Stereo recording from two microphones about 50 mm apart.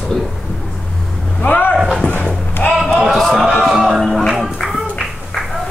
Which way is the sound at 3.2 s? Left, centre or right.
Centre.